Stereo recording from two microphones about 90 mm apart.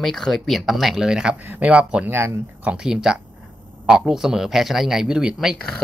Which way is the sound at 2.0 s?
30° right (ahead or behind).